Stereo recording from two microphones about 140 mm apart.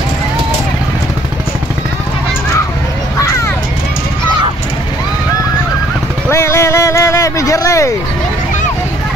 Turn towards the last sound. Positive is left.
turn(degrees=20)  # may be behind; listen again after turning